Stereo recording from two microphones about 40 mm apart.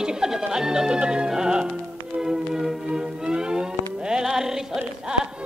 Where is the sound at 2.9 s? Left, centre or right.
Centre.